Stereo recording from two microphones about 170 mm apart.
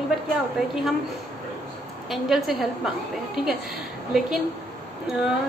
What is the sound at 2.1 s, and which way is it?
Speech, centre (ahead or behind).